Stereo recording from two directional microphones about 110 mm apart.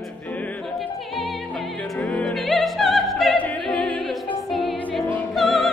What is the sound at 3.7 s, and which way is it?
Music, 15° left (ahead or behind).